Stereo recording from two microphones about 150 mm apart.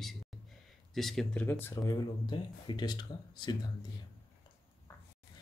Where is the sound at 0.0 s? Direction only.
Centre (ahead or behind).